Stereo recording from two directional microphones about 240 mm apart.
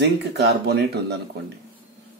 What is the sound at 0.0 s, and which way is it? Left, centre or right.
Speech, right.